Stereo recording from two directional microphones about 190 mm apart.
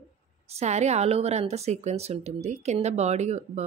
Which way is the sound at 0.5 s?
35° right (ahead or behind).